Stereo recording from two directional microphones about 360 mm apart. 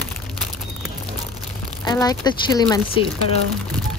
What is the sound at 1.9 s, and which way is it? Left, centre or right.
Speech, centre.